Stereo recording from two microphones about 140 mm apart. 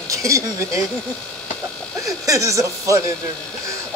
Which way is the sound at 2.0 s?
25° right (ahead or behind).